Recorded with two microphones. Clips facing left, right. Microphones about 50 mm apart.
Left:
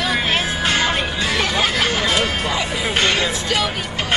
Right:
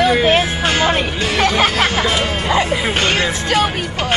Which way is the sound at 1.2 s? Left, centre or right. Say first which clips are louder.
Right 5 dB; right.